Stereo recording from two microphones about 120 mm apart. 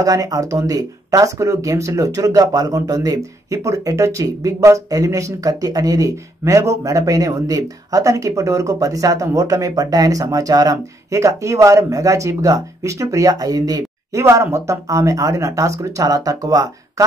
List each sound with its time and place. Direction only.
0.0 s speech: 30° right (ahead or behind)